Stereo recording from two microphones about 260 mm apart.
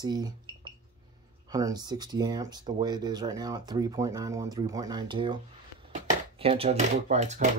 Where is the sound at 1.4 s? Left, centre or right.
Centre.